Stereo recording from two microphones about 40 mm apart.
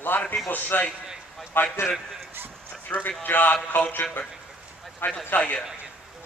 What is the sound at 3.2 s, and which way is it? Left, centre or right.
Speech, left.